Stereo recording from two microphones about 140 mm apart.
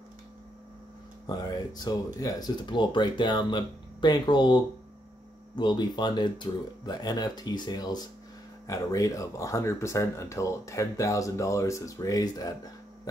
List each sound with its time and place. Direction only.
1.3 s speech: 30° left (ahead or behind)